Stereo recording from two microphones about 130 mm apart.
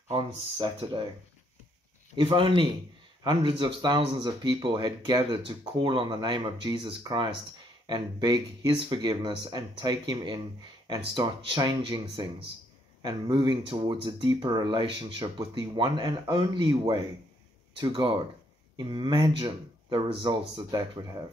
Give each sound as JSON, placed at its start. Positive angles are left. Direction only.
{"t": 0.1, "sound": "speech", "side_deg": -50}
{"t": 2.1, "sound": "speech", "side_deg": -40}